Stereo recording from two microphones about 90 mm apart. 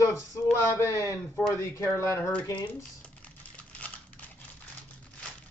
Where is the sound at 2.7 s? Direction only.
15° left (ahead or behind).